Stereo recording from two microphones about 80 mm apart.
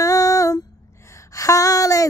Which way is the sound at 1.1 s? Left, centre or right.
Left.